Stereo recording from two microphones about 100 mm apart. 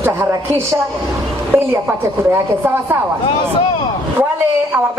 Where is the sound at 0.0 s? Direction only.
25° right (ahead or behind).